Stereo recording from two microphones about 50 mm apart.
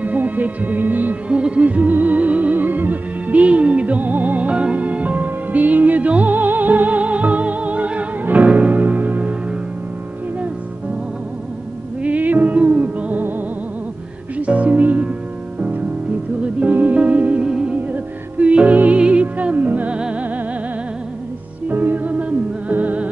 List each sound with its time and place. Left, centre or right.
0.0 s music: right
1.3 s music: right
12.0 s music: right
14.4 s music: right
16.7 s music: right
17.4 s music: centre
17.7 s music: right
20.0 s music: right
21.6 s music: right